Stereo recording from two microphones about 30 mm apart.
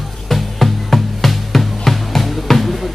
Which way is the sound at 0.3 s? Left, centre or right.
Centre.